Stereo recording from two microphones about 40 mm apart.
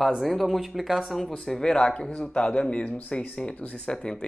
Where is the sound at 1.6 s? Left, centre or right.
Left.